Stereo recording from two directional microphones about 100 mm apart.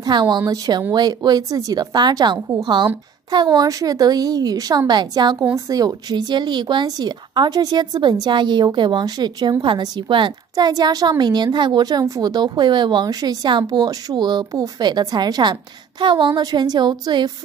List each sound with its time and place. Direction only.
0.0 s a woman's voice: 45° right (ahead or behind)
5.4 s a woman's voice: 35° right (ahead or behind); by 10.3 s 55° right (ahead or behind)
10.5 s a woman's voice: 40° right (ahead or behind)